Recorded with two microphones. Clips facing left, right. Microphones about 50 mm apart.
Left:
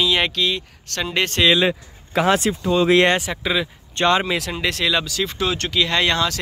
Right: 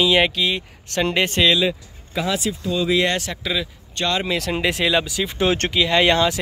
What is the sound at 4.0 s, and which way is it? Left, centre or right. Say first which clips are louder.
Speech: left 5 dB; left.